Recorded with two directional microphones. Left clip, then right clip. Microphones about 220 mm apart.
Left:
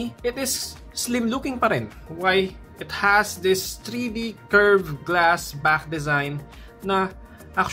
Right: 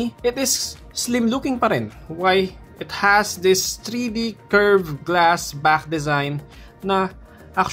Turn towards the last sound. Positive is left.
turn(degrees=-20)  # may be behind; listen again after turning